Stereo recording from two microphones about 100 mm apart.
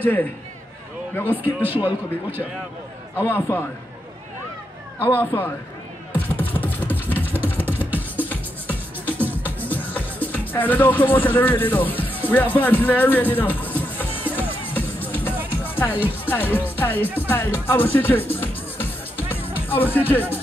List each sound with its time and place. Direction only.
0.0 s a man's voice: 20° left (ahead or behind)
1.4 s speech: 20° right (ahead or behind)
3.2 s a man's voice: 20° left (ahead or behind)
5.0 s a man's voice: 20° left (ahead or behind)
6.1 s music: 15° left (ahead or behind)
7.1 s a sound: 20° left (ahead or behind)
7.6 s music: 20° right (ahead or behind)
9.6 s music: 15° left (ahead or behind)
10.3 s speech: 15° left (ahead or behind)
14.3 s music: 15° left (ahead or behind)
16.3 s a man's voice: 20° left (ahead or behind)
17.3 s music: 20° left (ahead or behind)
19.5 s speech: 20° left (ahead or behind)